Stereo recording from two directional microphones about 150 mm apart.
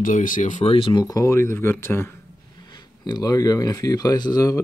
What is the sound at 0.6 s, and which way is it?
Speech, 35° left (ahead or behind).